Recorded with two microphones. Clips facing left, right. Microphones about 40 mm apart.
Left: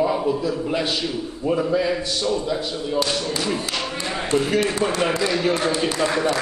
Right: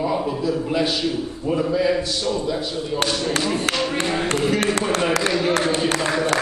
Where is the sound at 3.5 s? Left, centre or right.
Centre.